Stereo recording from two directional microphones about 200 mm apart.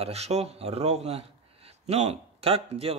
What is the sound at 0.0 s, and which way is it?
Speech, 30° right (ahead or behind).